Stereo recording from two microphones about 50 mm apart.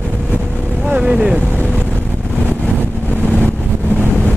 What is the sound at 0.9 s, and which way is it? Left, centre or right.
Vehicle, right.